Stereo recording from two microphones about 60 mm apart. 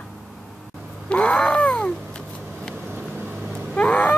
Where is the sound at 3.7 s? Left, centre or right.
Left.